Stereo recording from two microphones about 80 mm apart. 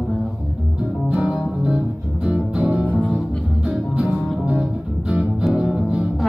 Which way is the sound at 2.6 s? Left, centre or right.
Centre.